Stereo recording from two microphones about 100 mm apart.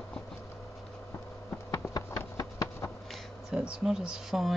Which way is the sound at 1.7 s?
30° left (ahead or behind).